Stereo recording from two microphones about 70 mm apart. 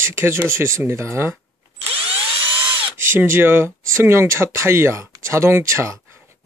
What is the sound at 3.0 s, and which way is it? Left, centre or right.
Speech, right.